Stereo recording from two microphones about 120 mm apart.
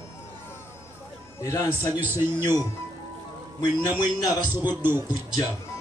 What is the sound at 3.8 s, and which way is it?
Speech, 35° left (ahead or behind).